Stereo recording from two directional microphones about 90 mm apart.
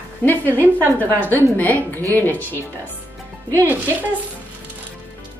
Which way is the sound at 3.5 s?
25° right (ahead or behind).